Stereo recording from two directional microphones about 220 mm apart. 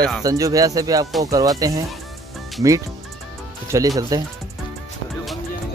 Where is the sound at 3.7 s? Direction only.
15° right (ahead or behind).